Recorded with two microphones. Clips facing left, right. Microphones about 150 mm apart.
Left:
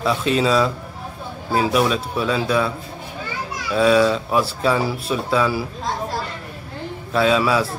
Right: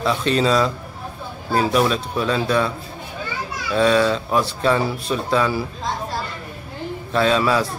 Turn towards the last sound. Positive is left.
turn(degrees=5)  # may be behind; listen again after turning